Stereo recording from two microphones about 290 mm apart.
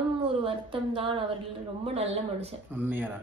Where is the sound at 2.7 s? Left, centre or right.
Centre.